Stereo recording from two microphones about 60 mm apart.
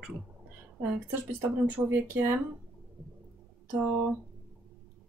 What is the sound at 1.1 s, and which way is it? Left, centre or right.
Speech, right.